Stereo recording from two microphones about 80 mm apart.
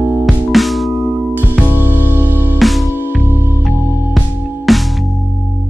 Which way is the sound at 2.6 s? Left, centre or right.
Centre.